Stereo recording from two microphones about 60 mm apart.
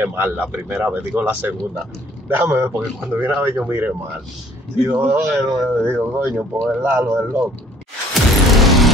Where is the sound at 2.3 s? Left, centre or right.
Right.